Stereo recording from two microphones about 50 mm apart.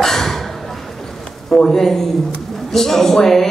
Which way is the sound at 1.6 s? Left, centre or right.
Centre.